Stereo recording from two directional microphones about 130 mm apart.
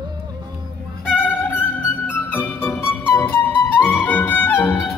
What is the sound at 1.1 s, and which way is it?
Music, 15° left (ahead or behind).